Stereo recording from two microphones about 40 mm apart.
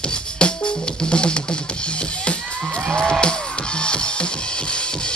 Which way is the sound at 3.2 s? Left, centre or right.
Left.